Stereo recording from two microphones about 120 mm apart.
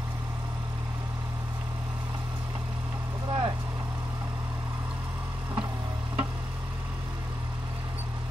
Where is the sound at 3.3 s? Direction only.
40° right (ahead or behind).